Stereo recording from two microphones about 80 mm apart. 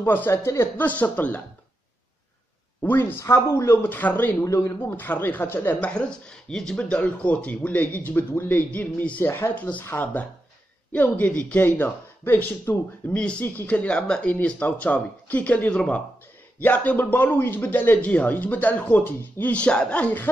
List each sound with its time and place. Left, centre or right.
0.0 s speech: left
2.8 s speech: left
4.5 s speech: left
4.8 s speech: left
5.8 s speech: centre
13.1 s speech: centre
19.5 s speech: centre